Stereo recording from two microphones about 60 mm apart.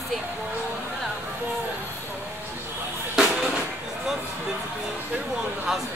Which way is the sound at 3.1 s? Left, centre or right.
Centre.